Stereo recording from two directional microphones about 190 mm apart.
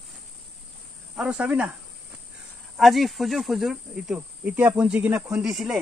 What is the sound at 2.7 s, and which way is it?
Speech, centre (ahead or behind).